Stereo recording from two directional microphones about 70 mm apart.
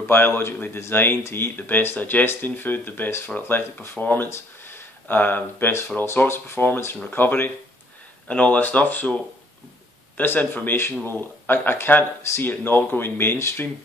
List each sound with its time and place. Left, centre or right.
0.0 s speech: left
4.3 s a sound: left
5.0 s speech: left
8.3 s speech: centre; by 13.7 s left